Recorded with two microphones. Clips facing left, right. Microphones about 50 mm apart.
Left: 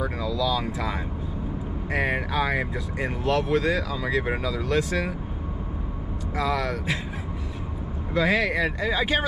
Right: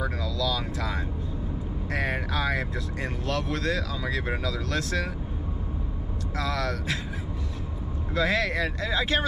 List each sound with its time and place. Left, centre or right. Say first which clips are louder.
0.0 s vehicle: left 3 dB; centre
1.9 s speech: left 4 dB; centre
6.3 s speech: left 4 dB; centre
8.1 s speech: left 3 dB; centre